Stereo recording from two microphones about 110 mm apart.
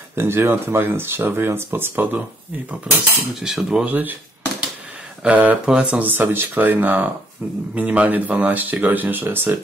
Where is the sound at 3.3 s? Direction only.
5° right (ahead or behind).